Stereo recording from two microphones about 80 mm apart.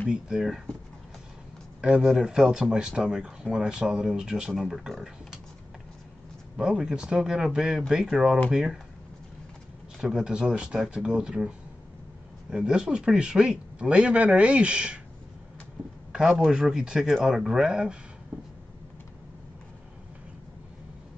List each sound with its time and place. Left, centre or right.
0.1 s a man's voice: centre
1.8 s a man's voice: centre
6.5 s a man's voice: centre
9.9 s a man's voice: centre
16.1 s a sound: centre
16.3 s a man's voice: centre
18.3 s a sound: right